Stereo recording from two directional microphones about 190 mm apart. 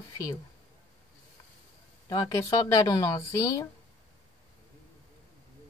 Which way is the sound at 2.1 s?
20° left (ahead or behind).